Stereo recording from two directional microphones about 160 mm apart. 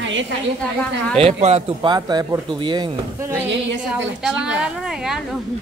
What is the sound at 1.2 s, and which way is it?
Speech, 40° right (ahead or behind).